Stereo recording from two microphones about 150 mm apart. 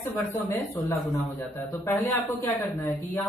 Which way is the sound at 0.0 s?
15° left (ahead or behind).